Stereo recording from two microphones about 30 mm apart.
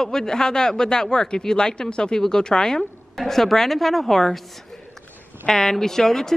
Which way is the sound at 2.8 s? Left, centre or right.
Centre.